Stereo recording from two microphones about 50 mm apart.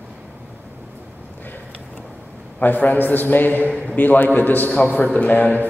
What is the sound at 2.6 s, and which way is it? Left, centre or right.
A man's voice, left.